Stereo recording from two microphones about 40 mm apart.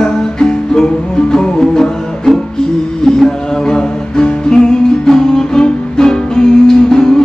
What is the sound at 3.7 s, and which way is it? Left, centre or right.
Music, centre.